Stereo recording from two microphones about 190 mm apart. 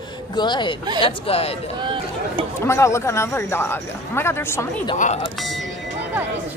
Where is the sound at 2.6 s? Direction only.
15° left (ahead or behind).